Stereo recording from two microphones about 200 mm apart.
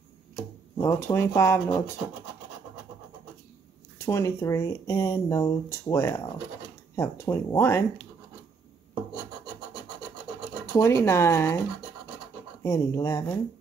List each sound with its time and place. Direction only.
0.8 s speech: 15° left (ahead or behind)
4.0 s speech: 15° left (ahead or behind)
10.7 s speech: 15° left (ahead or behind)
12.6 s speech: 15° left (ahead or behind)